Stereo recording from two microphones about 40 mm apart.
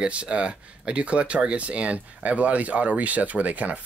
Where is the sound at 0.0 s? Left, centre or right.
Right.